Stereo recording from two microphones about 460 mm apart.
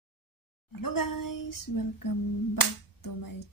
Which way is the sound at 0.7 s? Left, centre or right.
Left.